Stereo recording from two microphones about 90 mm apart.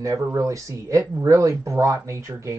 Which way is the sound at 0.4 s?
35° right (ahead or behind).